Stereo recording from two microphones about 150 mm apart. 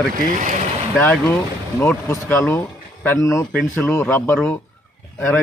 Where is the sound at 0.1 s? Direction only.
55° right (ahead or behind).